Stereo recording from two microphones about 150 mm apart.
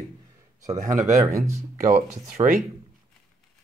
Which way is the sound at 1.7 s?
60° right (ahead or behind).